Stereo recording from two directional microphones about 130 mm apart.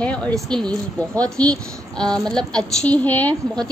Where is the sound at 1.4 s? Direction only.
10° left (ahead or behind).